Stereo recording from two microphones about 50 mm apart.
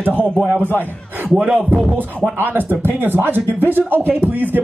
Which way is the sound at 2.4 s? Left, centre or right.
Right.